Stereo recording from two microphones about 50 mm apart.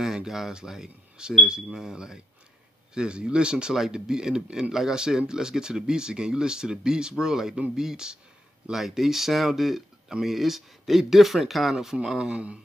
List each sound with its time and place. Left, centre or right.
0.0 s speech: centre
11.7 s speech: centre